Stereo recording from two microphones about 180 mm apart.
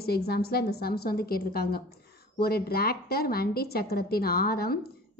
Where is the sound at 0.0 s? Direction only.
60° left (ahead or behind).